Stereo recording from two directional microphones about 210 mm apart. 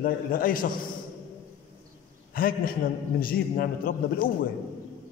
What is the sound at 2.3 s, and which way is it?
A man's voice, 45° left (ahead or behind).